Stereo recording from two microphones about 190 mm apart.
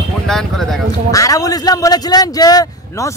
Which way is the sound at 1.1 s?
20° left (ahead or behind).